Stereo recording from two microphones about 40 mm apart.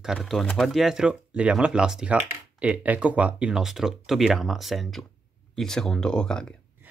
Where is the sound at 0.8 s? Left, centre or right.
Centre.